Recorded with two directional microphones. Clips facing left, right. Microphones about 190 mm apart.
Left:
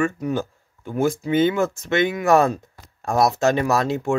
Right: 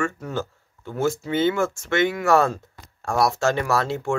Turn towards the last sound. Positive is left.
turn(degrees=15)  # may be behind; listen again after turning